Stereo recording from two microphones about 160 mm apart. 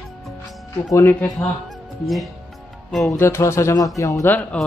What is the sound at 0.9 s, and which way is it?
Speech, 15° left (ahead or behind).